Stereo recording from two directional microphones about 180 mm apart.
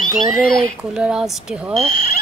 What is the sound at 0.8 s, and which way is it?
Speech, 5° right (ahead or behind).